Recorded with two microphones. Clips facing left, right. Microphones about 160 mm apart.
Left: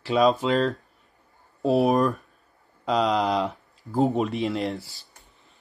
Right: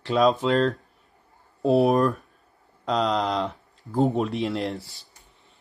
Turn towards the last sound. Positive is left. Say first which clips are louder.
# even
turn(degrees=0)  # may be behind; listen again after turning